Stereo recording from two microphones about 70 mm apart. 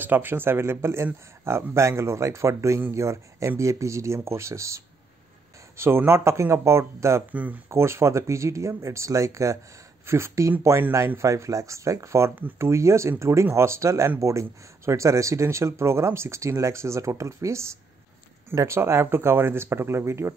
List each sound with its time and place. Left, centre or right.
0.0 s speech: right
5.8 s speech: right
7.2 s speech: right
7.7 s speech: right
18.8 s speech: right